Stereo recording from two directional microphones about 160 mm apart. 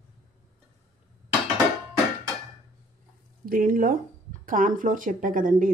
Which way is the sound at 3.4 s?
60° right (ahead or behind).